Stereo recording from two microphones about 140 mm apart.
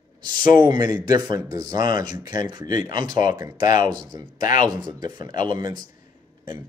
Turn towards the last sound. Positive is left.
turn(degrees=-30)  # may be behind; listen again after turning